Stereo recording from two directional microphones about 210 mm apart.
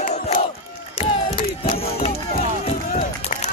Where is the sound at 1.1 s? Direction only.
25° left (ahead or behind).